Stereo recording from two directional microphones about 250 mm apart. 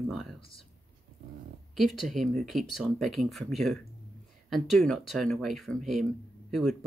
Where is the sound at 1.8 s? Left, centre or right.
Centre.